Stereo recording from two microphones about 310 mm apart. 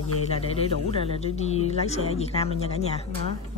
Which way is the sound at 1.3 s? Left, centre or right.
Left.